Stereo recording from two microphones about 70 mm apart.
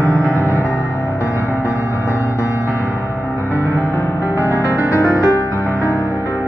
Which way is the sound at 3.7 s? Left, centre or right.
Right.